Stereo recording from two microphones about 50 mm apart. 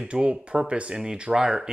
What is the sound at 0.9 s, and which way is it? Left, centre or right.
Speech, centre.